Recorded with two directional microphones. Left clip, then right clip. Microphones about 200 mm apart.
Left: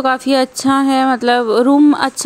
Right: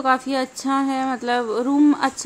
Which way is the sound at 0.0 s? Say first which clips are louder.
Left 6 dB; 40° left (ahead or behind).